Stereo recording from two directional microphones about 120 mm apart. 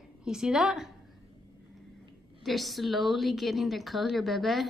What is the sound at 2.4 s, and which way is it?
A woman's voice, centre (ahead or behind).